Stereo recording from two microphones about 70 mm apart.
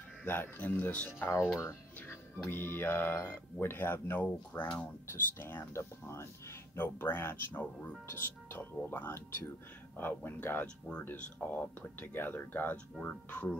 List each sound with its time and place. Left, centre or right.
0.2 s speech: left
1.6 s speech: left
4.5 s speech: left
5.1 s speech: left